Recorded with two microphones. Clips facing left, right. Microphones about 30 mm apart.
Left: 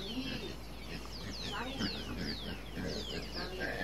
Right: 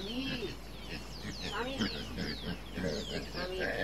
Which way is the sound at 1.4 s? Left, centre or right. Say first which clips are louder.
Right 3 dB; centre.